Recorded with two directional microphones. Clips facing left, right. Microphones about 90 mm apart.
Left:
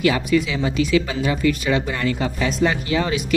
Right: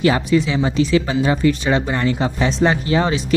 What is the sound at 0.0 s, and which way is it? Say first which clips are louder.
Speech: right 2 dB; 30° right (ahead or behind).